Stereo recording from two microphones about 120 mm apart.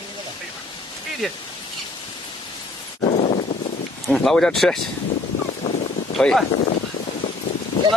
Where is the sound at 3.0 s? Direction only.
70° left (ahead or behind).